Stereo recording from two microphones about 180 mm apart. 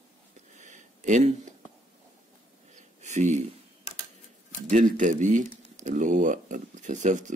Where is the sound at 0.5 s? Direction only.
45° right (ahead or behind).